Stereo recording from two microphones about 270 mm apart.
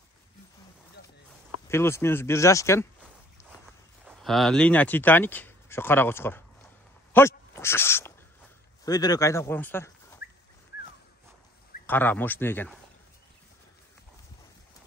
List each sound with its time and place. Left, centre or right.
1.7 s speech: centre
7.1 s a sound: centre
8.8 s speech: centre
11.8 s speech: centre